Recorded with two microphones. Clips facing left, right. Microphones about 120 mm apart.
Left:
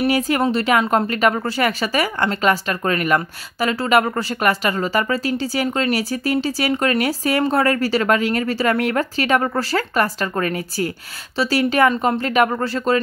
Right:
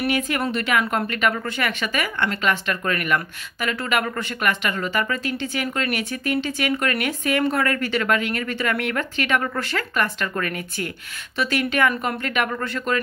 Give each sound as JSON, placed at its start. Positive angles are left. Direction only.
{"t": 0.0, "sound": "speech", "side_deg": 35}